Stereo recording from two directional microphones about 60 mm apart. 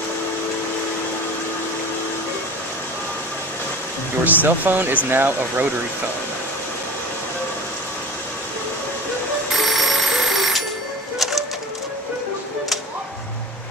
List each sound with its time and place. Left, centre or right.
4.2 s speech: right
9.6 s telephone: centre